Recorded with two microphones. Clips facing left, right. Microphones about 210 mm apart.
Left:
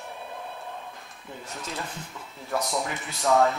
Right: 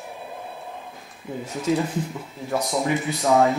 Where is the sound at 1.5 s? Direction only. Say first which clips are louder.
Right 15 dB; 5° right (ahead or behind).